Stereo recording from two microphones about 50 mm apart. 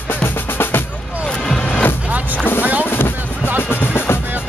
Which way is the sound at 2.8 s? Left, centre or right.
Left.